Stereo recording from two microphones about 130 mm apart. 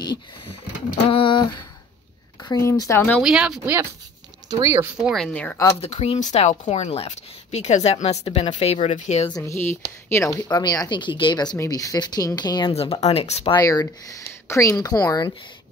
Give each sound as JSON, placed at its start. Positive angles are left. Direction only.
{"t": 1.1, "sound": "a sound", "side_deg": 40}
{"t": 2.4, "sound": "speech", "side_deg": 25}
{"t": 3.2, "sound": "speech", "side_deg": -5}
{"t": 4.5, "sound": "speech", "side_deg": -25}
{"t": 4.9, "sound": "speech", "side_deg": -5}
{"t": 5.2, "sound": "speech", "side_deg": 10}
{"t": 5.8, "sound": "a woman's voice", "side_deg": 55}
{"t": 9.3, "sound": "speech", "side_deg": 20}
{"t": 10.5, "sound": "speech", "side_deg": 30}
{"t": 11.5, "sound": "speech", "side_deg": 25}
{"t": 12.7, "sound": "speech", "side_deg": 50}
{"t": 13.6, "sound": "speech", "side_deg": 25}